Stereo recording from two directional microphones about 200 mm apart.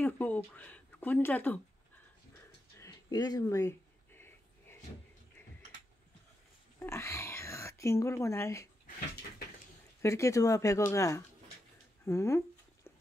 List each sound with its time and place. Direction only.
0.0 s speech: 10° left (ahead or behind)
2.8 s a sound: 20° left (ahead or behind)
6.9 s speech: 15° left (ahead or behind)
10.0 s speech: 15° left (ahead or behind)